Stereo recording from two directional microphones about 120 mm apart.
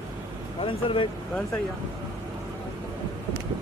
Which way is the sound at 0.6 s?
45° left (ahead or behind).